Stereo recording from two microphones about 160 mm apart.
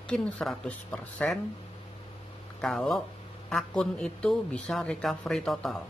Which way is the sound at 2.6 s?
Centre (ahead or behind).